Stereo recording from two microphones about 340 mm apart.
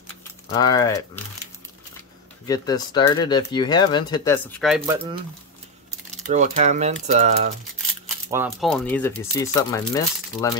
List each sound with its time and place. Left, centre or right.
0.5 s speech: centre
2.4 s speech: centre
6.2 s speech: right
8.3 s speech: centre